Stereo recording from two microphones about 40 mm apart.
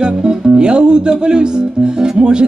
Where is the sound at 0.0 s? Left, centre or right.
Right.